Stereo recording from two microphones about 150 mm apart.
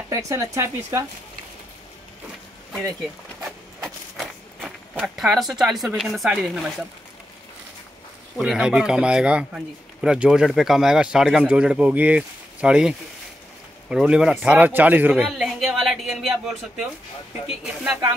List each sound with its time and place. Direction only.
0.1 s speech: 20° right (ahead or behind)
3.4 s zipper: centre (ahead or behind)
8.4 s a man's voice: 5° right (ahead or behind)